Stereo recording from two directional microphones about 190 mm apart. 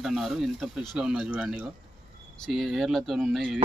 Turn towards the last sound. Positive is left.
turn(degrees=0)  # may be behind; listen again after turning